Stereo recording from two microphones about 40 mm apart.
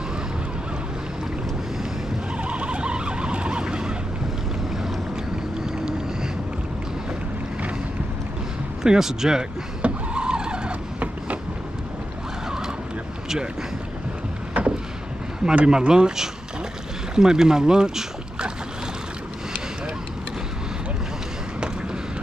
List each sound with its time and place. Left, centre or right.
2.3 s vehicle: right
8.8 s speech: centre
9.8 s vehicle: right
14.5 s vehicle: right
15.5 s speech: right